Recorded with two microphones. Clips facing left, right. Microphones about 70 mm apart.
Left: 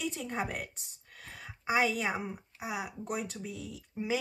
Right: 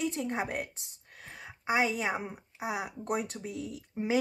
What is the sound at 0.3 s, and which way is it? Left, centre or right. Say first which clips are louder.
Speech: right 2 dB; centre.